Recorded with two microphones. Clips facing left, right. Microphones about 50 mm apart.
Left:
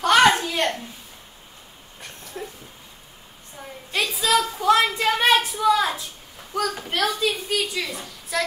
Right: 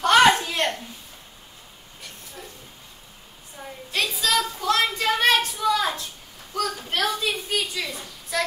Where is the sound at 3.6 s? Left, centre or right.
Centre.